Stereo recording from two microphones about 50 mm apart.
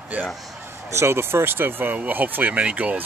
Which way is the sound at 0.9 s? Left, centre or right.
Right.